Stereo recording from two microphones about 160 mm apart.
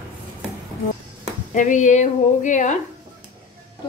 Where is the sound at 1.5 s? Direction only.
55° left (ahead or behind).